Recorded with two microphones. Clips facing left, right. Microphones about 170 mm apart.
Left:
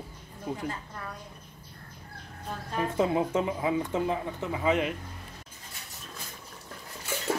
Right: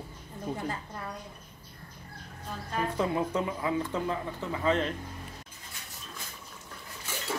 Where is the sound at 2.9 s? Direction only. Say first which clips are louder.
Left 4 dB; 20° left (ahead or behind).